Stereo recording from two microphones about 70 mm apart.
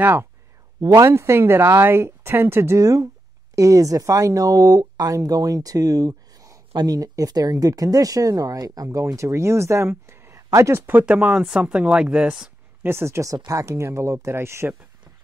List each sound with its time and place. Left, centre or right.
0.0 s speech: right
0.7 s speech: right
2.8 s speech: right
6.7 s speech: right
11.1 s speech: right
11.4 s a woman's voice: centre
12.8 s speech: right
13.3 s speech: right